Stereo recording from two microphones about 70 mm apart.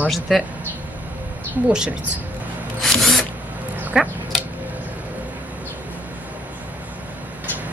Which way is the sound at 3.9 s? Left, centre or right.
Centre.